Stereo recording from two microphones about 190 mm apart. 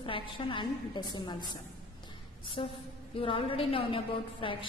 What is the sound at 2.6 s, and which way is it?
A woman's voice, 25° left (ahead or behind).